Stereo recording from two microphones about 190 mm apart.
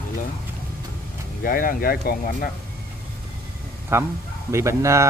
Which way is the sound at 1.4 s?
45° left (ahead or behind).